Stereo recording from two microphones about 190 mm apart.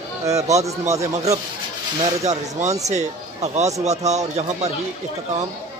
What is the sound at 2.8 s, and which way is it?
Speech, 35° right (ahead or behind).